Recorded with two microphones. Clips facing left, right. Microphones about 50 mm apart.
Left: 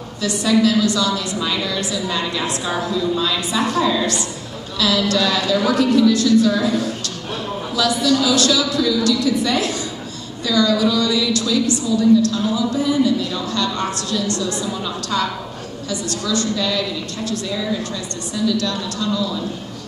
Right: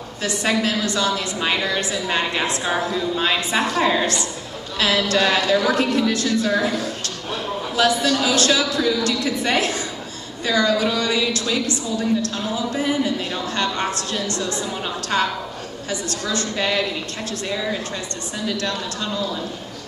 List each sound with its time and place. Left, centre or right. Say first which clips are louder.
0.2 s a woman's voice: left 5 dB; right
7.7 s a woman's voice: left 1 dB; right